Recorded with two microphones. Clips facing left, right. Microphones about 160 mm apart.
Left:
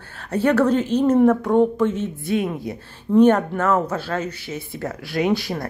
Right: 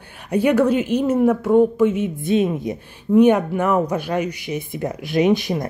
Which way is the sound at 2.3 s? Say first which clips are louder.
Right 4 dB; 20° right (ahead or behind).